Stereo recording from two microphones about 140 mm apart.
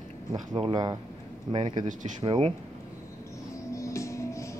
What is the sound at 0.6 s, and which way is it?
Speech, 35° right (ahead or behind).